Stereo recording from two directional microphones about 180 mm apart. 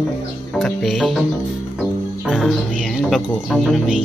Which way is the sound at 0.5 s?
Centre (ahead or behind).